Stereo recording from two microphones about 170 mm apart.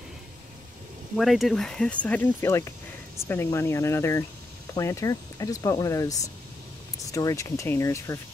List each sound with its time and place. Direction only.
1.1 s speech: centre (ahead or behind); by 8.2 s 15° left (ahead or behind)